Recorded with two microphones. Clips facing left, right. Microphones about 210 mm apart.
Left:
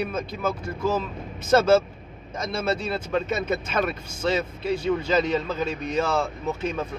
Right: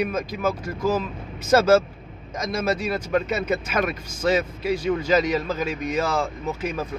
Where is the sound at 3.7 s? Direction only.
10° right (ahead or behind).